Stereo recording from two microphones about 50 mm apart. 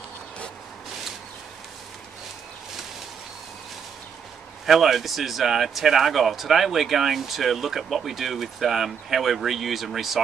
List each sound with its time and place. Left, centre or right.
4.6 s speech: centre